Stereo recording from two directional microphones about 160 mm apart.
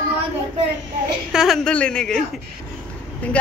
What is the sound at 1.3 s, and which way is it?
A woman's voice, centre (ahead or behind).